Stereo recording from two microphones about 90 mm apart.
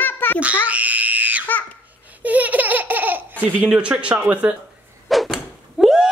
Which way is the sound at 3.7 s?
10° right (ahead or behind).